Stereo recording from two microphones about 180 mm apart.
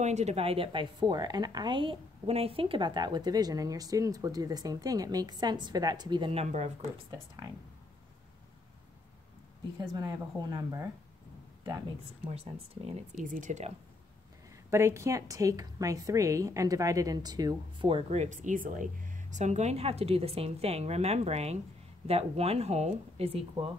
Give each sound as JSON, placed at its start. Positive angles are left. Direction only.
{"t": 0.0, "sound": "a woman's voice", "side_deg": -40}
{"t": 6.4, "sound": "a woman's voice", "side_deg": -40}
{"t": 7.1, "sound": "a woman's voice", "side_deg": -20}
{"t": 9.8, "sound": "a woman's voice", "side_deg": -20}
{"t": 12.3, "sound": "a woman's voice", "side_deg": -35}
{"t": 13.2, "sound": "speech", "side_deg": -45}
{"t": 14.7, "sound": "a woman's voice", "side_deg": -15}